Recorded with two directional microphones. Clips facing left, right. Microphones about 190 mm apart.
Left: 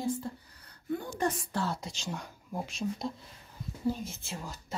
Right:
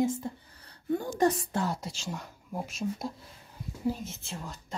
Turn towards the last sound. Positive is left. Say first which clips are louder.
# even
turn(degrees=0)  # may be behind; listen again after turning